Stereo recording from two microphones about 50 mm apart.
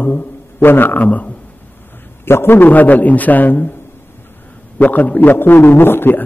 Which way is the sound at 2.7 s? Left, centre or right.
Left.